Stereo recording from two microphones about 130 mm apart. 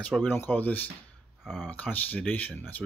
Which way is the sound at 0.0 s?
10° left (ahead or behind).